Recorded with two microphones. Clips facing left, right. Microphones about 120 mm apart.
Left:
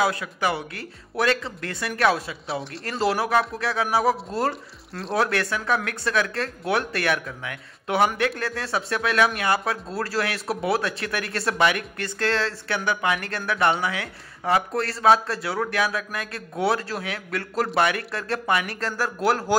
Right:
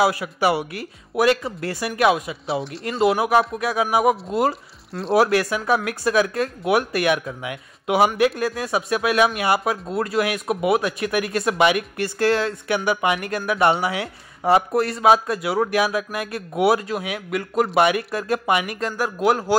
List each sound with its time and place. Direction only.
0.0 s speech: 15° right (ahead or behind)
2.4 s speech: centre (ahead or behind)
3.2 s speech: 20° right (ahead or behind)
4.5 s speech: centre (ahead or behind)
5.3 s speech: 20° right (ahead or behind)